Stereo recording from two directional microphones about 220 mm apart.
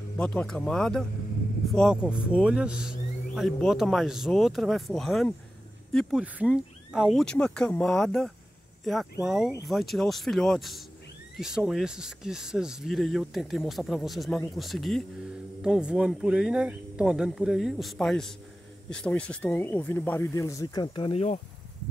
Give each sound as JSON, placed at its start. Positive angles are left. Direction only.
{"t": 0.2, "sound": "speech", "side_deg": 5}